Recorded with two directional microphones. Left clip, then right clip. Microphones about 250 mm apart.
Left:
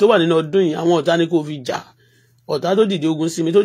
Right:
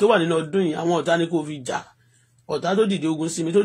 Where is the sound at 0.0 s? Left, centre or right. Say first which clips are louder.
Left 5 dB; left.